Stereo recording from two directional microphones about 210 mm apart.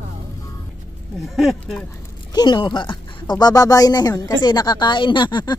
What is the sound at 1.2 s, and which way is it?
Speech, centre (ahead or behind).